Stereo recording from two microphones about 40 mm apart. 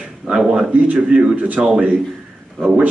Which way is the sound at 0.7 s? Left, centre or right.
Right.